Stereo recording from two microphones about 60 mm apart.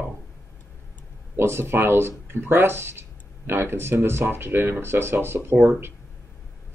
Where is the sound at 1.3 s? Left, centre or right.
Right.